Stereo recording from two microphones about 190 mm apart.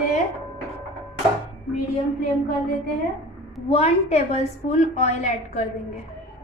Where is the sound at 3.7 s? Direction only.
35° left (ahead or behind).